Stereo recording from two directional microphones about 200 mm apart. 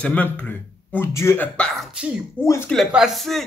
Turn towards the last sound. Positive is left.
turn(degrees=0)  # may be behind; listen again after turning